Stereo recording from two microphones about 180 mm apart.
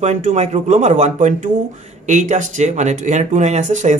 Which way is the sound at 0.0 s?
40° right (ahead or behind).